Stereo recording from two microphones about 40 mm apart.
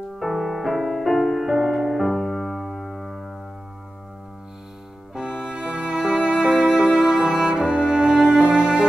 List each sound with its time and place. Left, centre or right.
0.2 s music: centre
5.1 s music: centre